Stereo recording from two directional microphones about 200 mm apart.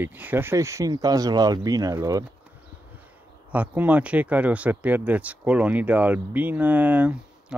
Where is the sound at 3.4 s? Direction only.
10° right (ahead or behind).